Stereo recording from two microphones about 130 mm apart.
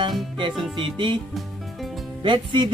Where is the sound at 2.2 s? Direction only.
40° right (ahead or behind).